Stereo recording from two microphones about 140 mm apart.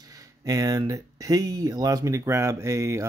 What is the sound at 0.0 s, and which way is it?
Speech, 25° right (ahead or behind).